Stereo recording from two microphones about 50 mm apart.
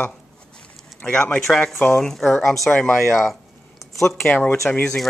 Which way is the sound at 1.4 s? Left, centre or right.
Centre.